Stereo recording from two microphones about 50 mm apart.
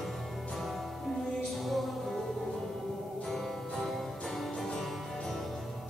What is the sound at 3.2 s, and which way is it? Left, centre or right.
Music, centre.